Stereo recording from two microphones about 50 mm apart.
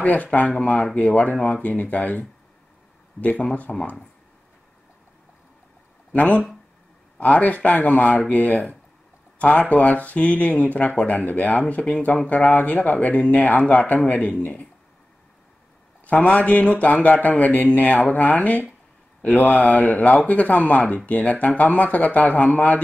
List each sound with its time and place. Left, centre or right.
0.0 s a man's voice: left
6.1 s a man's voice: left
16.1 s a man's voice: left